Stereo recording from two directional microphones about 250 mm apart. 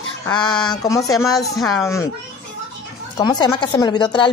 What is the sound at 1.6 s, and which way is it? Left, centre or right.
Speech, centre.